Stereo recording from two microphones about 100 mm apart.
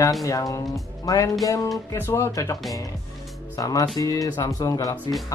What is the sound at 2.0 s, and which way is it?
Speech, 25° left (ahead or behind).